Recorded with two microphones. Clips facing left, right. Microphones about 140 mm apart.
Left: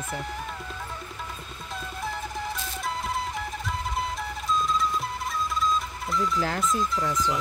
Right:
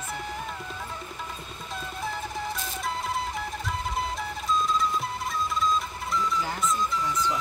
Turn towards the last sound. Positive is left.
turn(degrees=0)  # may be behind; listen again after turning